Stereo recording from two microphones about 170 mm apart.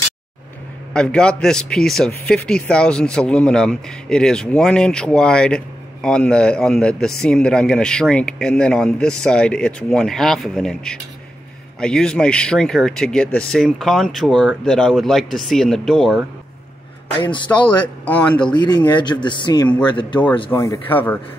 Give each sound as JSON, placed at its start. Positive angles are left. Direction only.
{"t": 0.9, "sound": "a man's voice", "side_deg": 5}
{"t": 17.2, "sound": "speech", "side_deg": 30}
{"t": 18.0, "sound": "speech", "side_deg": 10}
{"t": 18.5, "sound": "speech", "side_deg": 25}
{"t": 20.5, "sound": "speech", "side_deg": 15}